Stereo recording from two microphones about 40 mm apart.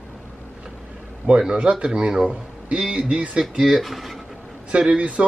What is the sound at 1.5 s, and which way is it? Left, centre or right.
A man's voice, right.